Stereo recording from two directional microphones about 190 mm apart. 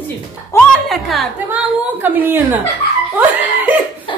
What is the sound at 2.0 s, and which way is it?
Speech, 10° right (ahead or behind).